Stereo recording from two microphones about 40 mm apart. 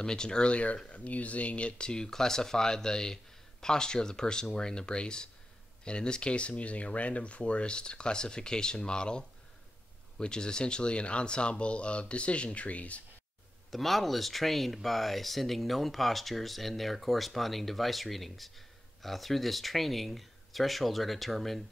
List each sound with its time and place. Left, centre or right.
0.0 s speech: centre
0.5 s speech: left
1.9 s speech: centre; by 13.0 s left
13.7 s speech: centre